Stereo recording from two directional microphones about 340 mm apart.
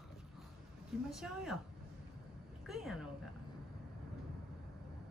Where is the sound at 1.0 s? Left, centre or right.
Centre.